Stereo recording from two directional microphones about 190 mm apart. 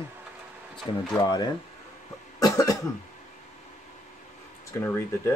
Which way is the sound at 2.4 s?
20° left (ahead or behind).